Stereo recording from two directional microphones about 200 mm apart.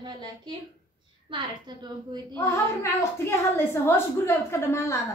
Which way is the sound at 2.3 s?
15° left (ahead or behind).